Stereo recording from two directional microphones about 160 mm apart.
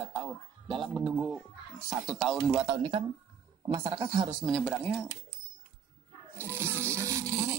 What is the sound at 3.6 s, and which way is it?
Speech, 30° right (ahead or behind).